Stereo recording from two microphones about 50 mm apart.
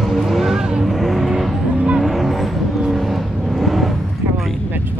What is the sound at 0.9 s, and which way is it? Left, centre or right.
Vehicle, centre.